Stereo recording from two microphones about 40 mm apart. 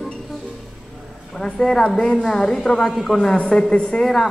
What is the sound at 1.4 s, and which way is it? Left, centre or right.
A woman's voice, centre.